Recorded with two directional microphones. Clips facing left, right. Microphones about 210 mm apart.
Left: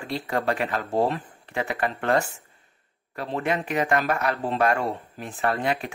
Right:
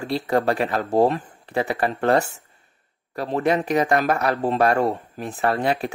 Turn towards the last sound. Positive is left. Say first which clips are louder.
# right 4 dB
turn(degrees=-35)  # may be behind; listen again after turning